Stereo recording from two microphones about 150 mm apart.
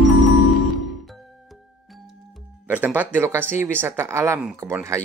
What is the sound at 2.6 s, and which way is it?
Speech, 10° right (ahead or behind).